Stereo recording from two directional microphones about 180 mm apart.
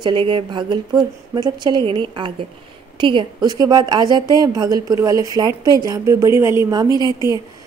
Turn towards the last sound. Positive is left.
turn(degrees=-25)  # may be behind; listen again after turning